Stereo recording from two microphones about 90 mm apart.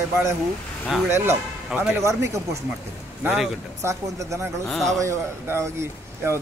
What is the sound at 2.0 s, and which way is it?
Speech, 35° right (ahead or behind).